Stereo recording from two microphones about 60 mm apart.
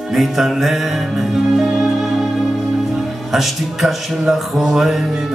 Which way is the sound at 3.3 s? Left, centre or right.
Centre.